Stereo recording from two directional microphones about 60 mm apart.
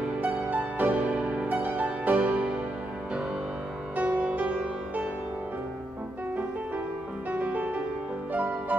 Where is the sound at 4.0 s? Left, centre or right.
Right.